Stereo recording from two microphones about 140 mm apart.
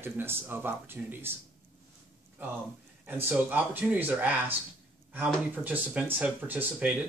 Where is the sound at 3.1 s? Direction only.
15° right (ahead or behind).